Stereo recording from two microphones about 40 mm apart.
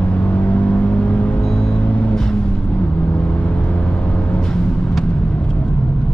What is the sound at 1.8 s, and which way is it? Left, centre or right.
Vehicle, left.